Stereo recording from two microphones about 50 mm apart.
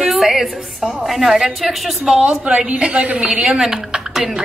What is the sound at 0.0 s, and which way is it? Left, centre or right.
A woman's voice, centre.